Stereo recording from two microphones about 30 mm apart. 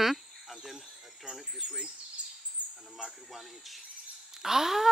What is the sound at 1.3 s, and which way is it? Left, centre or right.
Speech, centre.